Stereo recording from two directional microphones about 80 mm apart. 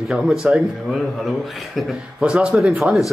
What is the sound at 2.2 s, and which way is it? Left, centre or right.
Speech, centre.